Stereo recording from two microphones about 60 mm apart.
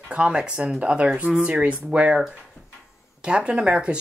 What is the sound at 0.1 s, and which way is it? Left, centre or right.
Speech, centre.